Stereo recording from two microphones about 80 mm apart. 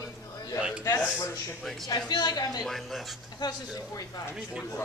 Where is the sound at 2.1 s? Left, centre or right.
Left.